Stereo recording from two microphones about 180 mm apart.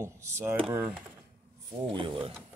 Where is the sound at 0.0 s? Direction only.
15° right (ahead or behind).